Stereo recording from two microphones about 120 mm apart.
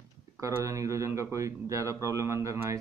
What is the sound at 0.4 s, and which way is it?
A man's voice, 25° right (ahead or behind).